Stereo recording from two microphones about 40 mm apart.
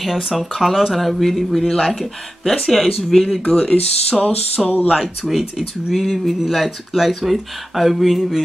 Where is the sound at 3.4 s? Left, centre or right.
Left.